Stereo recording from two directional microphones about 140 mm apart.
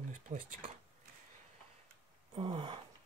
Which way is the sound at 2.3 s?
40° right (ahead or behind).